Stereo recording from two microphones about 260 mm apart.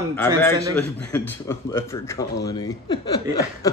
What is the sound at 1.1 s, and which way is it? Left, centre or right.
Speech, centre.